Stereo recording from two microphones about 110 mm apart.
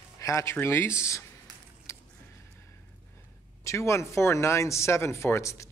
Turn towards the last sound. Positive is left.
turn(degrees=25)  # may be behind; listen again after turning